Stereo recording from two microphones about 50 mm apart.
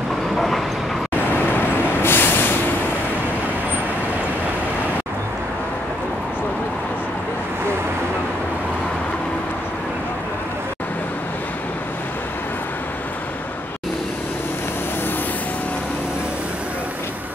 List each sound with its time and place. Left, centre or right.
1.1 s vehicle: left